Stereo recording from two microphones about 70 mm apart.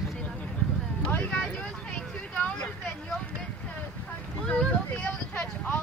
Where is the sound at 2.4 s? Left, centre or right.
Centre.